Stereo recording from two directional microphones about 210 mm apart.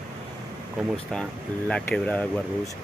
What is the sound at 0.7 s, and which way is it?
Speech, 5° left (ahead or behind).